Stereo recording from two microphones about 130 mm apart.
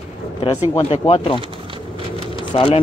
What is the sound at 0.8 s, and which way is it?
Speech, 45° left (ahead or behind).